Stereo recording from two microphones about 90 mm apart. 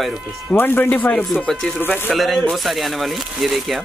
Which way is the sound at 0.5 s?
20° left (ahead or behind).